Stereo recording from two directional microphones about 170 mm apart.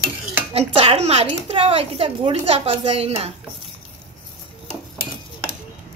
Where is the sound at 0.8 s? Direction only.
35° right (ahead or behind).